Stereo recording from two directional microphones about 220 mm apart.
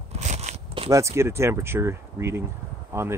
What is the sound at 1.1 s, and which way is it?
Speech, 10° right (ahead or behind).